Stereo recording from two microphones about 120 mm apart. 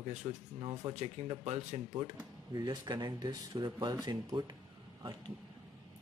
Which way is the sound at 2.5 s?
35° right (ahead or behind).